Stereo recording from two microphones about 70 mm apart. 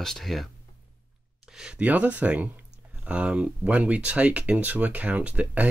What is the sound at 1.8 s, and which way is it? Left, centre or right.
Speech, right.